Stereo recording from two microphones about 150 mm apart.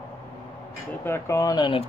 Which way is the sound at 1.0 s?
15° left (ahead or behind).